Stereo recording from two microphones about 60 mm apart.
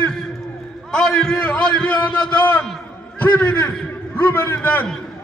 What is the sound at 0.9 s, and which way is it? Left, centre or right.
A man's voice, centre.